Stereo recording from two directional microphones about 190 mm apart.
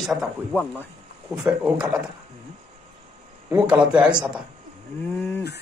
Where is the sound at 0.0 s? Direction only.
Centre (ahead or behind).